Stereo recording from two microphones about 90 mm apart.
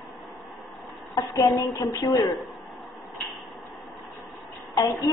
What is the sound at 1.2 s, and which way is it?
Speech, 40° left (ahead or behind).